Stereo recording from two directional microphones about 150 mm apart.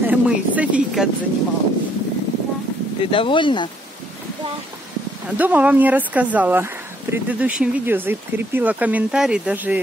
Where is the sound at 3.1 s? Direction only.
35° left (ahead or behind).